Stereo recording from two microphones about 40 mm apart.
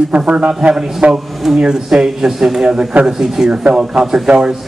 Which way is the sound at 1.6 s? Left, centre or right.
Centre.